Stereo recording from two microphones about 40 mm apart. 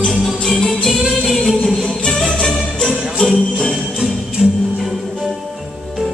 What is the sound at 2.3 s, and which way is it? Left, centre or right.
Jingle bell, centre.